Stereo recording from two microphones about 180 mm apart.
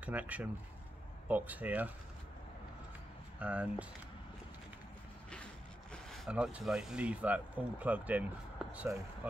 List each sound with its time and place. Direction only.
0.0 s speech: 10° right (ahead or behind)
3.3 s speech: 5° right (ahead or behind)
5.3 s speech: 5° left (ahead or behind)